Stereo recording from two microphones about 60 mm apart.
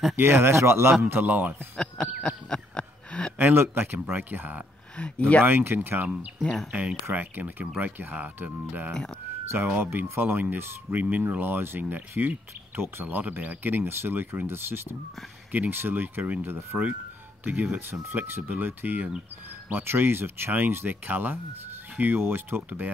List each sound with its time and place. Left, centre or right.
0.1 s speech: right
1.0 s speech: right
1.8 s a sound: centre
3.3 s speech: right
18.0 s speech: right